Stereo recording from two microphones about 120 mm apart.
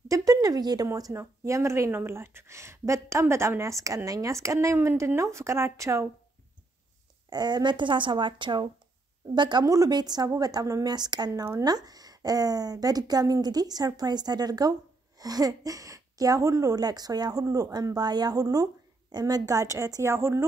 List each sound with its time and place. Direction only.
0.1 s speech: 30° right (ahead or behind)
7.2 s speech: 35° right (ahead or behind)